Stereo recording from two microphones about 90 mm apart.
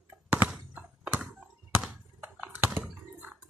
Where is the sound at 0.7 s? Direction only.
15° right (ahead or behind).